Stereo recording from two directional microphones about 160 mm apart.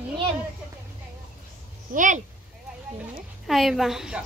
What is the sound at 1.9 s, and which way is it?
Speech, 50° right (ahead or behind).